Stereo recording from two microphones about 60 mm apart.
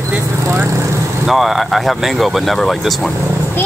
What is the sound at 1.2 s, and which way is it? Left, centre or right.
Speech, centre.